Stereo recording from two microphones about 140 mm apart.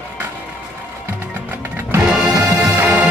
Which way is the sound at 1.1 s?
15° right (ahead or behind).